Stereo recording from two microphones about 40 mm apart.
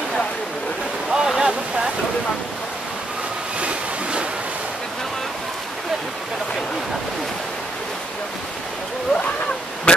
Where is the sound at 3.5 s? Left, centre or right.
Right.